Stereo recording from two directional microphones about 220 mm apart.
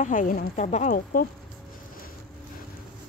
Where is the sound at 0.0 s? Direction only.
35° left (ahead or behind).